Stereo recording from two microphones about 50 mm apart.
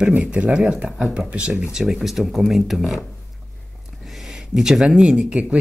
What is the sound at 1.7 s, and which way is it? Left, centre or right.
Speech, centre.